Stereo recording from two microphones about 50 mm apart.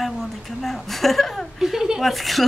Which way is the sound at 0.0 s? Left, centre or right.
Centre.